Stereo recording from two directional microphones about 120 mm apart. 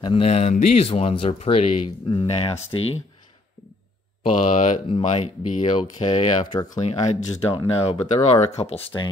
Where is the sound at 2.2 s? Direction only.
55° left (ahead or behind).